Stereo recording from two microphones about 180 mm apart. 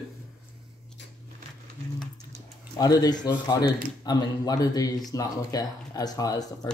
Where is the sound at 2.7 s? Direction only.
20° left (ahead or behind).